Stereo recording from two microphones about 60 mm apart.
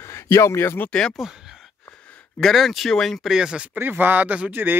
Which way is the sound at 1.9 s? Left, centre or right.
Left.